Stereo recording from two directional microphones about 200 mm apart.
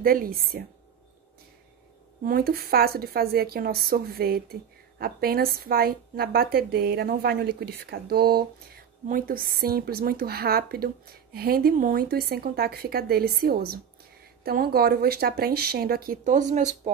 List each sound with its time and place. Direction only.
0.0 s speech: 45° right (ahead or behind)
2.2 s speech: 50° right (ahead or behind)